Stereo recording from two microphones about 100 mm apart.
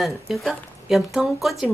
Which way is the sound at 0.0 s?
Centre (ahead or behind).